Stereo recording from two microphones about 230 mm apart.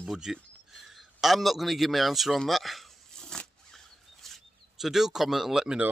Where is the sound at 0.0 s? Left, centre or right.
Centre.